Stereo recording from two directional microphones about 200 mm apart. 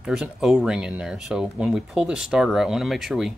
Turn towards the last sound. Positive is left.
turn(degrees=0)  # may be behind; listen again after turning